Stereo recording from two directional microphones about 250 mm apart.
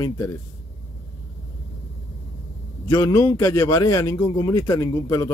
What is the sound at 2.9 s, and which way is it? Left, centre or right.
A man's voice, centre.